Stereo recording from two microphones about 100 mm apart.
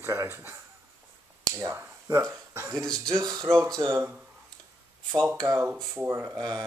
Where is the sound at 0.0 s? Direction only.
25° right (ahead or behind).